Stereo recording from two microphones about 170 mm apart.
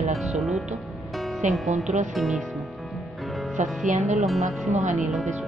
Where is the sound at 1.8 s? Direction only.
45° right (ahead or behind).